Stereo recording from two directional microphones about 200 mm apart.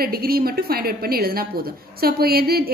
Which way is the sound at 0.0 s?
50° right (ahead or behind).